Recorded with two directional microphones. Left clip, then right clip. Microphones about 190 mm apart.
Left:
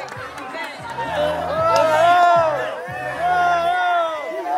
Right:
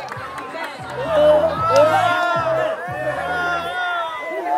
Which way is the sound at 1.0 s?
20° left (ahead or behind).